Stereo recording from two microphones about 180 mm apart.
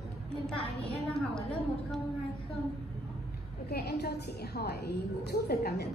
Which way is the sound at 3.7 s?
65° left (ahead or behind).